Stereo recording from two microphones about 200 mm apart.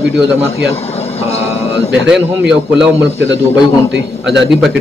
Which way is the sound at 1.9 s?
5° right (ahead or behind).